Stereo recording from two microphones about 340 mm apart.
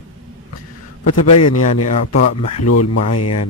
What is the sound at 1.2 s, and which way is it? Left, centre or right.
Speech, left.